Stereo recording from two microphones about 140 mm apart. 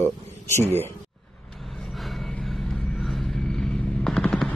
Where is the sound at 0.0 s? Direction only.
20° left (ahead or behind).